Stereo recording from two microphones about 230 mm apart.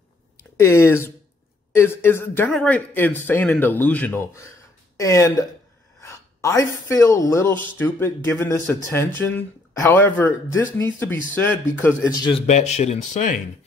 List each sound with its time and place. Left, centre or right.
0.4 s speech: centre; by 13.4 s left